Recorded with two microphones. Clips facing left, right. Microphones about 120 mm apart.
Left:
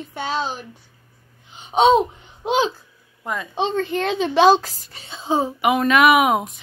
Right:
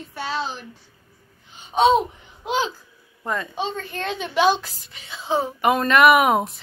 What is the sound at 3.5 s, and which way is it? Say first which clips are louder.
A woman's voice: left 6 dB; 25° left (ahead or behind).